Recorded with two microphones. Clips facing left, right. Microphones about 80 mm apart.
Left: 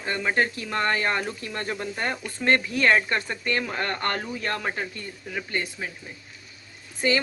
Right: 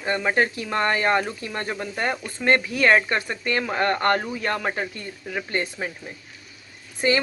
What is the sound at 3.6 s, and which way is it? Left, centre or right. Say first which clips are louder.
Speech: right 5 dB; right.